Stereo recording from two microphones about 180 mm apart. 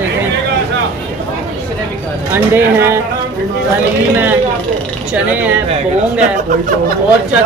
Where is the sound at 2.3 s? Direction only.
10° right (ahead or behind).